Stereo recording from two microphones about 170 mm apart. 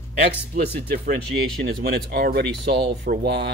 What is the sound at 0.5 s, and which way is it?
Speech, 50° right (ahead or behind).